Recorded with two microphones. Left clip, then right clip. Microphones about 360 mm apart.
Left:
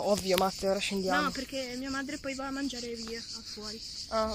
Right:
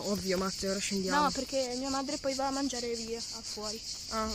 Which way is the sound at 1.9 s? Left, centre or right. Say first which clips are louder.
Right 3 dB; right.